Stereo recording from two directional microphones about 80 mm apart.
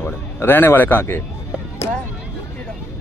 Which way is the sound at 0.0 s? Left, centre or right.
Left.